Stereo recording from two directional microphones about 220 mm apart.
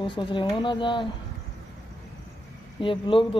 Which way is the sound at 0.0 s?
20° left (ahead or behind).